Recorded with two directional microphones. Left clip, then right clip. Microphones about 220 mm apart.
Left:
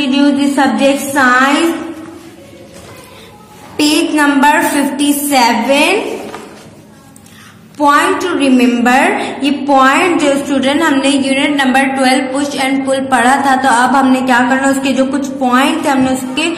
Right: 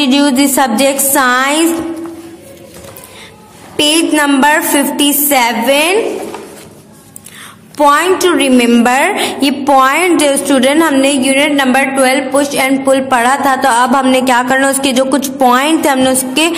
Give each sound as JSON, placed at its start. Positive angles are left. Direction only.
{"t": 0.2, "sound": "music", "side_deg": -50}
{"t": 3.7, "sound": "a woman's voice", "side_deg": -40}
{"t": 7.7, "sound": "a woman's voice", "side_deg": -40}